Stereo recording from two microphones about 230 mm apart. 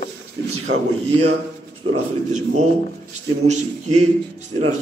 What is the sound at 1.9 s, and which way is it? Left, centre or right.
A man's voice, right.